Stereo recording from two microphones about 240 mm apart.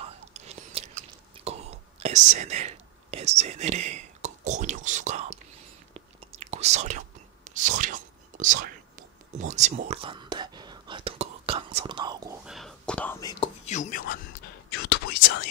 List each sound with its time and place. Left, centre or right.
0.0 s whispering: right
1.4 s speech: right
5.9 s whispering: right
12.4 s whispering: centre
13.7 s speech: left
14.7 s whispering: left